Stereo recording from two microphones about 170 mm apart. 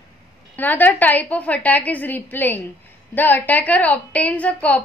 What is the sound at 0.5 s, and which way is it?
A woman's voice, 10° left (ahead or behind).